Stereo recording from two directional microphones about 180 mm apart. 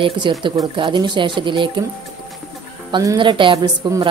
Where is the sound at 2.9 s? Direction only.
20° right (ahead or behind).